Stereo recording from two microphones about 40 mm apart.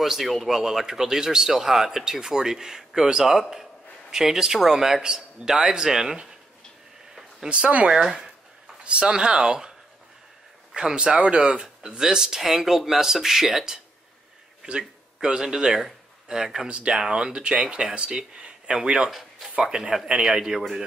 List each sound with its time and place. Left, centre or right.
0.0 s speech: centre
7.3 s speech: right
7.9 s speech: centre
8.8 s speech: right
10.7 s a man's voice: centre
11.1 s speech: right
19.0 s a sound: centre
19.7 s speech: centre